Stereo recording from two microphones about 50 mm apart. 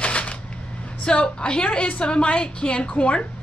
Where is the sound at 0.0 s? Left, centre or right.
Left.